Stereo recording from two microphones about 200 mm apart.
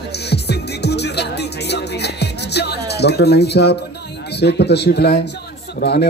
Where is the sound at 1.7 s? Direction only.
55° left (ahead or behind).